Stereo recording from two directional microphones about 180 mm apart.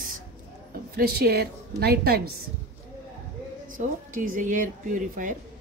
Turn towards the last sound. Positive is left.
turn(degrees=-45)  # may be behind; listen again after turning